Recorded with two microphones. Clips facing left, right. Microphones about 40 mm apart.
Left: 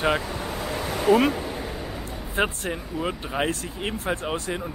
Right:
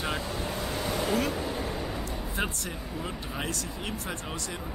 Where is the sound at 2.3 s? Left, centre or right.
Left.